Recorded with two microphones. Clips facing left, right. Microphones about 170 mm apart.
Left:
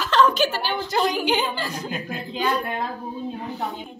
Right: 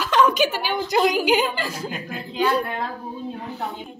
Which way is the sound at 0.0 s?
15° right (ahead or behind).